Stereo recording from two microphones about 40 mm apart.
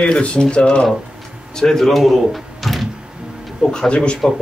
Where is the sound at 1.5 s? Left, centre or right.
Centre.